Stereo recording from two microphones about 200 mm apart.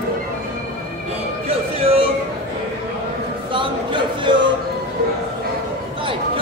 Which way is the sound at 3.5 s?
25° right (ahead or behind).